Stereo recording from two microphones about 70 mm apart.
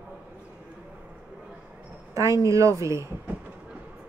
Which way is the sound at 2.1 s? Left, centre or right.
Right.